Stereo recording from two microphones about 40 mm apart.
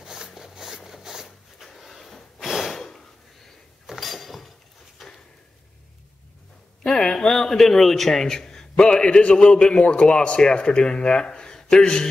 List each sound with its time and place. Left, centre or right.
0.0 s a sound: centre
1.6 s drawer open or close: centre
2.4 s snort: centre
2.7 s snort: centre
3.8 s chink: centre
5.0 s drawer open or close: centre
6.9 s a man's voice: centre